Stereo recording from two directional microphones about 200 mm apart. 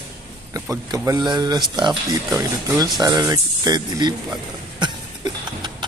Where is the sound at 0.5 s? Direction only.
15° right (ahead or behind).